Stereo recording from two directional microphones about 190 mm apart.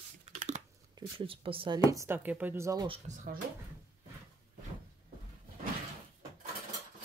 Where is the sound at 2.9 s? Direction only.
40° right (ahead or behind).